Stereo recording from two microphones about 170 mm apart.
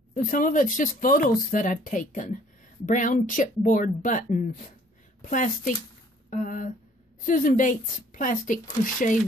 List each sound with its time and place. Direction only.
0.1 s speech: 50° left (ahead or behind)